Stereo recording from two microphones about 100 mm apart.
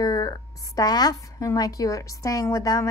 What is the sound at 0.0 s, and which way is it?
A woman's voice, 40° left (ahead or behind).